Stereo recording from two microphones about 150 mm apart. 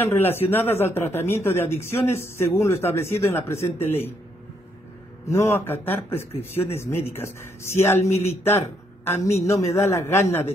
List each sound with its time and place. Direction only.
0.0 s speech: 15° left (ahead or behind)
5.3 s a man's voice: 15° left (ahead or behind)